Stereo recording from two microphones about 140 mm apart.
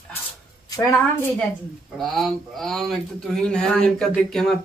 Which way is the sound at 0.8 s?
20° left (ahead or behind).